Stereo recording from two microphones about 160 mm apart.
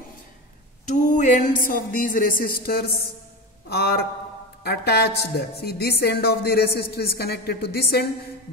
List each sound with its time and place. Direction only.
0.8 s a man's voice: 50° left (ahead or behind); by 8.1 s 75° left (ahead or behind)